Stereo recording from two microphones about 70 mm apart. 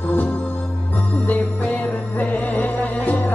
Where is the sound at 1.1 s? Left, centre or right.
Left.